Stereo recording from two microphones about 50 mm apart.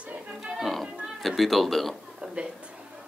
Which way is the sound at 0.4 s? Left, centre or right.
Centre.